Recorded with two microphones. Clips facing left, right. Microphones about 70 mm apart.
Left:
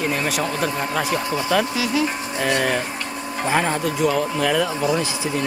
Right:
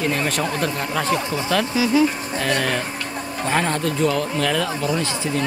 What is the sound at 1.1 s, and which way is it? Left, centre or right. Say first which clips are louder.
Speech: left 1 dB; centre.